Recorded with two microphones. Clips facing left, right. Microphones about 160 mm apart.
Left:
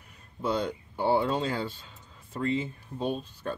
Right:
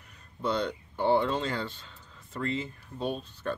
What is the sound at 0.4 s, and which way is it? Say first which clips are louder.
Speech: left 1 dB; 10° left (ahead or behind).